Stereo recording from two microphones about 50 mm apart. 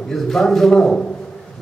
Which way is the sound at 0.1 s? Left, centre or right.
Centre.